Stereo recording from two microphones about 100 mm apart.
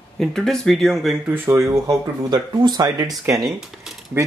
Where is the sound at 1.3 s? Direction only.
20° right (ahead or behind).